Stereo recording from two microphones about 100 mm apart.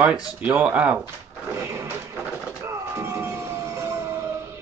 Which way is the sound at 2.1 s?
15° right (ahead or behind).